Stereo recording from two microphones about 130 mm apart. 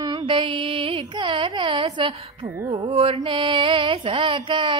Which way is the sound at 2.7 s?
50° right (ahead or behind).